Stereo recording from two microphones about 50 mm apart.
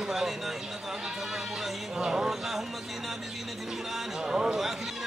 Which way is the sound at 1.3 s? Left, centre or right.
Centre.